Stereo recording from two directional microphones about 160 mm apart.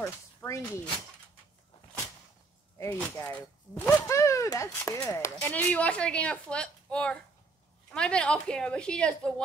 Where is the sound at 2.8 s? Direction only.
10° left (ahead or behind).